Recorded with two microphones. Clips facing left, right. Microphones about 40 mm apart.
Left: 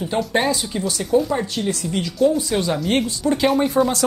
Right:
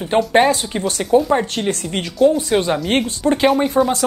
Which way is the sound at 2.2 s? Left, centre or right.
Right.